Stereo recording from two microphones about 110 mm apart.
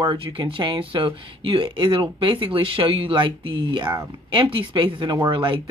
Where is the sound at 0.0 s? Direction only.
45° right (ahead or behind).